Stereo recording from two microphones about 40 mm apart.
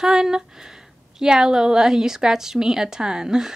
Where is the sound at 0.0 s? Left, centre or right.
Centre.